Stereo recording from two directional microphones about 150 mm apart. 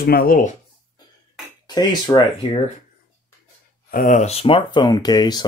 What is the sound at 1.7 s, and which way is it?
Speech, 30° left (ahead or behind).